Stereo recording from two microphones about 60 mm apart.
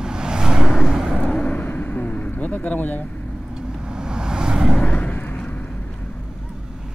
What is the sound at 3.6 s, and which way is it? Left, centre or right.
Vehicle, centre.